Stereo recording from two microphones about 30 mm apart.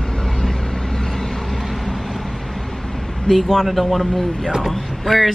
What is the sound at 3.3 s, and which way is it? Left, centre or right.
A woman's voice, centre.